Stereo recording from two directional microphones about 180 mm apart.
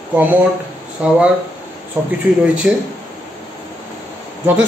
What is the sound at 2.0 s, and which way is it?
Speech, 15° right (ahead or behind).